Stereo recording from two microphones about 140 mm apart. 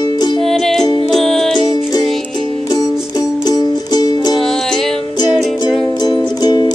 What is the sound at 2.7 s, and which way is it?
Music, 25° left (ahead or behind).